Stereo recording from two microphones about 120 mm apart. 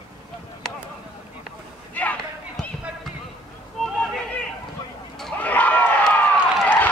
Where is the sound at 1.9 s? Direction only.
15° left (ahead or behind).